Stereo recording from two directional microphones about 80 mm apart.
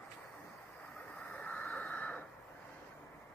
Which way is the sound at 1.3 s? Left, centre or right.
Centre.